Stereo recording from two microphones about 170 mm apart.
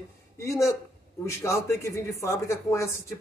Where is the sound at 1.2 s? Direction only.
15° left (ahead or behind).